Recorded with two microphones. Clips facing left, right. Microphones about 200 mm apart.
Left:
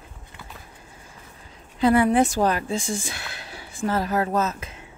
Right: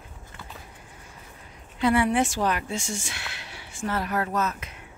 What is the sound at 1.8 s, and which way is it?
A woman's voice, 40° left (ahead or behind).